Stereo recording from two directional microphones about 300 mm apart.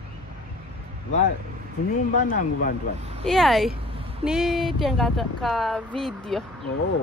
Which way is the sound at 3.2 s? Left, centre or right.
Centre.